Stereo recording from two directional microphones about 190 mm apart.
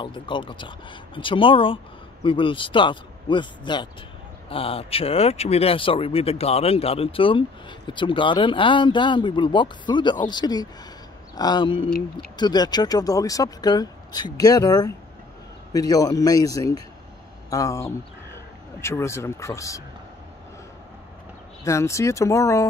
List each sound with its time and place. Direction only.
0.0 s speech: 25° left (ahead or behind)
21.6 s speech: 15° left (ahead or behind)